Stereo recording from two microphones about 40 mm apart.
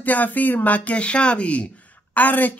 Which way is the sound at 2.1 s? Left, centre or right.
Left.